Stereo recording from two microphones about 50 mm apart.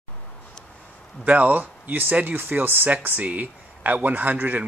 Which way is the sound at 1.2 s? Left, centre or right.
Right.